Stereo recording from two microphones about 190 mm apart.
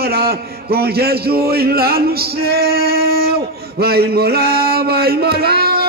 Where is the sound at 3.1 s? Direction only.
55° right (ahead or behind).